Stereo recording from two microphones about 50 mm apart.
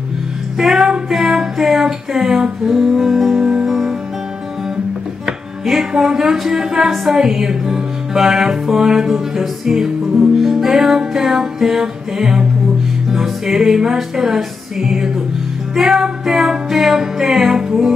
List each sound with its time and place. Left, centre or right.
0.6 s music: centre
5.2 s music: centre